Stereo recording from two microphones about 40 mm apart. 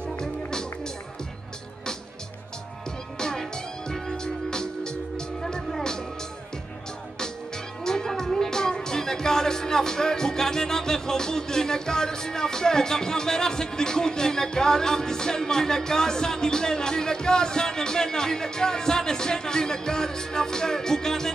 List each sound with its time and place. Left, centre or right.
0.2 s music: centre
3.2 s music: centre
7.8 s speech: centre